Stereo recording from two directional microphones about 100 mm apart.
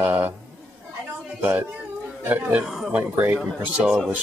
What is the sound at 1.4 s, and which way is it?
Speech, 15° right (ahead or behind).